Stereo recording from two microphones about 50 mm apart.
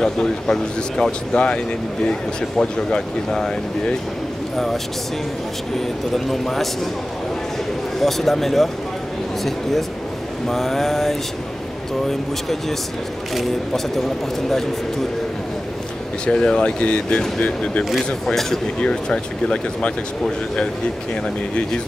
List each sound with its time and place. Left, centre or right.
0.0 s speech: centre
5.8 s speech: centre
8.0 s speech: centre
16.3 s speech: centre
18.2 s speech: centre